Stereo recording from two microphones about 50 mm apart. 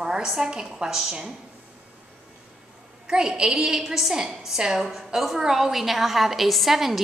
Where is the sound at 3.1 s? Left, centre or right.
Centre.